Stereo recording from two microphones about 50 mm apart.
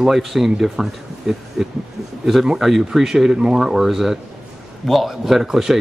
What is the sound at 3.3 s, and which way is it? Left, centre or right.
Speech, centre.